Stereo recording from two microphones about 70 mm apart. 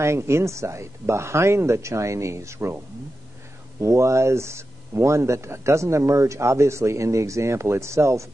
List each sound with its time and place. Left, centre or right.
0.0 s speech: right
3.8 s speech: right